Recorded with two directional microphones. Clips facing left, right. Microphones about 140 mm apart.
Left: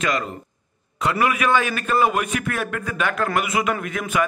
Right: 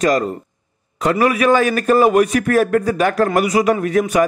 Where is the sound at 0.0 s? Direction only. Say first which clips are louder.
Right 8 dB; 40° right (ahead or behind).